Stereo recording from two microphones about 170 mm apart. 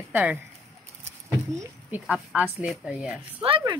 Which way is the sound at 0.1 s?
10° right (ahead or behind).